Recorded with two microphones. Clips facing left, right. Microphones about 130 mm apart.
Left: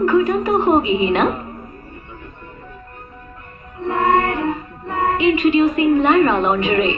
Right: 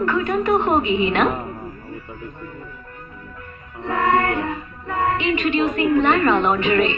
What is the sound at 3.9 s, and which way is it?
Music, 25° left (ahead or behind).